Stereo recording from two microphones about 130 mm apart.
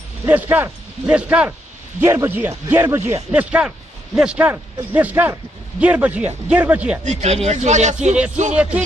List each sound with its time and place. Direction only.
0.2 s speech: 15° right (ahead or behind)
7.1 s speech: 60° right (ahead or behind)